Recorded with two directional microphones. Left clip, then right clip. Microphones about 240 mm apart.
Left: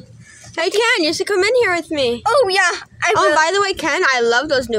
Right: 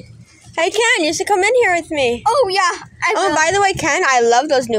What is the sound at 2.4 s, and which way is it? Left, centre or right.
Speech, left.